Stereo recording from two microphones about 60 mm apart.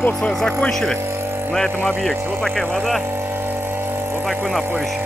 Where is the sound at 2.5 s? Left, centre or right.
Centre.